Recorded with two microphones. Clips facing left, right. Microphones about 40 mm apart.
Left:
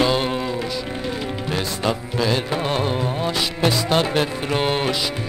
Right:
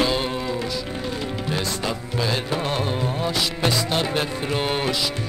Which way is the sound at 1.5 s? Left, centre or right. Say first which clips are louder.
Left 4 dB; centre.